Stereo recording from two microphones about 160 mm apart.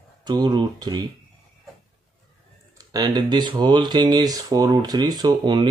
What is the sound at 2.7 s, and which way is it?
Speech, 25° right (ahead or behind).